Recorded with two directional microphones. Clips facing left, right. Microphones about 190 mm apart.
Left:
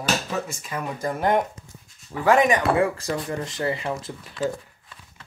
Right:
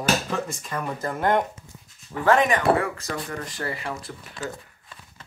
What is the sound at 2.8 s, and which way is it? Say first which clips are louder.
Speech: left 4 dB; 30° left (ahead or behind).